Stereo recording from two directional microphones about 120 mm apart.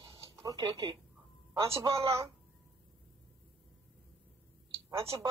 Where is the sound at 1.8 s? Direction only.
25° right (ahead or behind).